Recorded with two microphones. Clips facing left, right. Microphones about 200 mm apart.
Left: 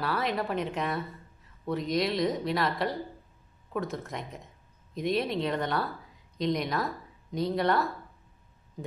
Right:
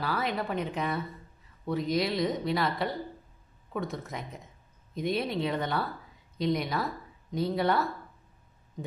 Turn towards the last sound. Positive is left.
turn(degrees=0)  # may be behind; listen again after turning